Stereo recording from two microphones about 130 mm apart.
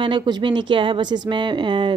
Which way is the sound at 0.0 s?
35° right (ahead or behind).